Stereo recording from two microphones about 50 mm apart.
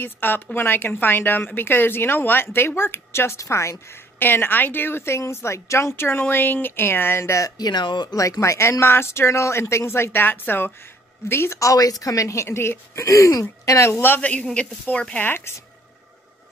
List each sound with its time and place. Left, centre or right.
0.0 s a woman's voice: left
4.2 s a woman's voice: left
8.2 s speech: left
12.2 s a woman's voice: left
12.4 s speech: left
14.2 s a woman's voice: left
15.2 s a woman's voice: left